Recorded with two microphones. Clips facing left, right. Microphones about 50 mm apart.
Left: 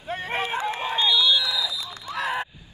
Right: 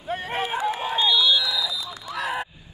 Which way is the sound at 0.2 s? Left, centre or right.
Left.